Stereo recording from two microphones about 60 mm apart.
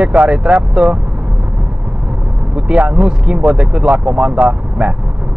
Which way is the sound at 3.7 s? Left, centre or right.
Centre.